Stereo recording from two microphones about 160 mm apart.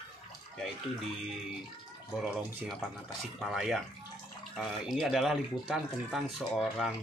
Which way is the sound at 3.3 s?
Centre (ahead or behind).